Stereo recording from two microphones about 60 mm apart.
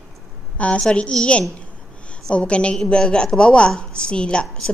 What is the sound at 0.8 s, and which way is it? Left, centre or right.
A woman's voice, centre.